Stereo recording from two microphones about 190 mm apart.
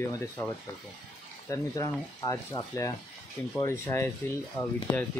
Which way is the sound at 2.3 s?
20° left (ahead or behind).